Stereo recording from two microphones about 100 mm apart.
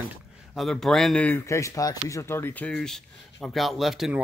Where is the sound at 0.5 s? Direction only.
Centre (ahead or behind).